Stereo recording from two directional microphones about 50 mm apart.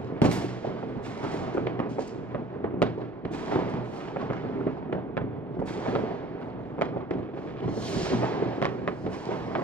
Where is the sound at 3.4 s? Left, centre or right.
Left.